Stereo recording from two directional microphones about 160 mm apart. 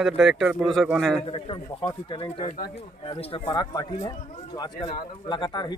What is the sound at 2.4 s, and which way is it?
Speech, 65° left (ahead or behind).